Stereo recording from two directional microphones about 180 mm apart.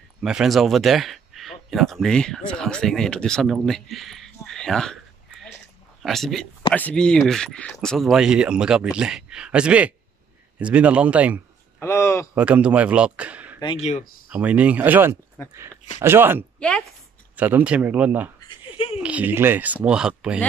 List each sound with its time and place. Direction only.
0.2 s speech: centre (ahead or behind)
6.0 s speech: centre (ahead or behind)
11.8 s speech: 15° left (ahead or behind)
12.4 s speech: 5° right (ahead or behind)
13.6 s speech: 25° left (ahead or behind)
14.3 s speech: 5° right (ahead or behind)
15.4 s speech: 15° left (ahead or behind)
16.0 s speech: 15° right (ahead or behind)
16.5 s a woman's voice: 5° left (ahead or behind)
17.4 s speech: 10° right (ahead or behind)
18.5 s a sound: 30° left (ahead or behind)
18.9 s speech: 10° right (ahead or behind)